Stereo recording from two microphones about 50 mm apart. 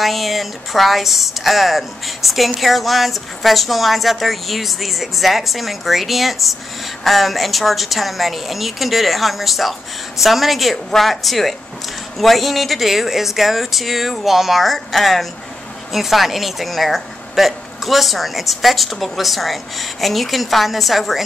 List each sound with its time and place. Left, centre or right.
0.0 s speech: centre